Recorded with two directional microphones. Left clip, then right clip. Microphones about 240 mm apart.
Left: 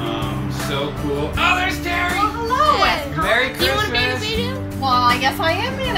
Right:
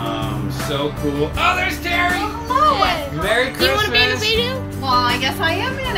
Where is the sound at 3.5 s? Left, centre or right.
Centre.